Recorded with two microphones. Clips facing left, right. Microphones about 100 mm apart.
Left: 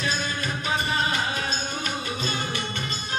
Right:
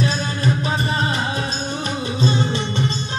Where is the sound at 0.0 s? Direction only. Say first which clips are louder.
Right 7 dB; 35° right (ahead or behind).